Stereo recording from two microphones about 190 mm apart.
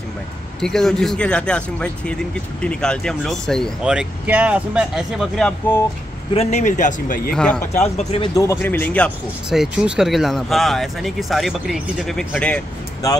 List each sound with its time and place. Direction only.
0.6 s speech: centre (ahead or behind)
6.3 s speech: 35° left (ahead or behind)
7.2 s speech: 5° left (ahead or behind)
8.0 s speech: 35° left (ahead or behind)
8.4 s speech: 15° left (ahead or behind)
9.5 s speech: 5° right (ahead or behind)